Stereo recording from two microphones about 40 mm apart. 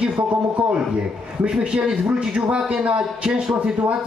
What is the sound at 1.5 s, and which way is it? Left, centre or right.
A man's voice, right.